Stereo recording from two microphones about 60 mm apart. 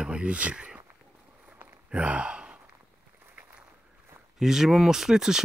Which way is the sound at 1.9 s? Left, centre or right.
Right.